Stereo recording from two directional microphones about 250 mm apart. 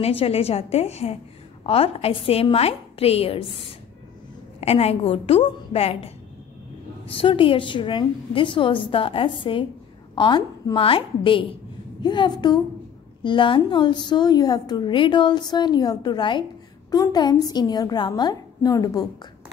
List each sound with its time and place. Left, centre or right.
0.0 s a woman's voice: left